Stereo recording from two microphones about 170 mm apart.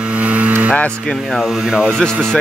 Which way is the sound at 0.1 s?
5° right (ahead or behind).